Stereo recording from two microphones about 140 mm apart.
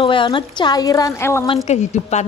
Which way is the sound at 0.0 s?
35° left (ahead or behind).